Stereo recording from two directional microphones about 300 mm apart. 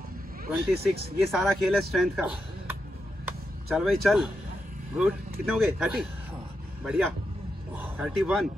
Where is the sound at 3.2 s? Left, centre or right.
Centre.